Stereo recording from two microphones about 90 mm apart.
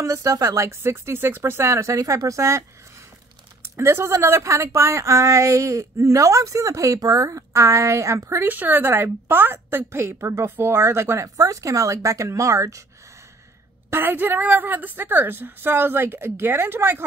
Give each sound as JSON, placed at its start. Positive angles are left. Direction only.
{"t": 0.0, "sound": "a woman's voice", "side_deg": -40}
{"t": 3.6, "sound": "a woman's voice", "side_deg": -30}
{"t": 8.5, "sound": "a woman's voice", "side_deg": -20}
{"t": 13.8, "sound": "a woman's voice", "side_deg": -25}